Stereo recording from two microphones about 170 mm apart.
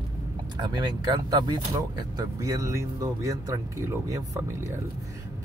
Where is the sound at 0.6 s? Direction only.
25° right (ahead or behind).